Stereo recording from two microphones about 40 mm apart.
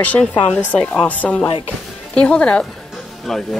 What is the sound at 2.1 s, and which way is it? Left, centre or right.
Speech, left.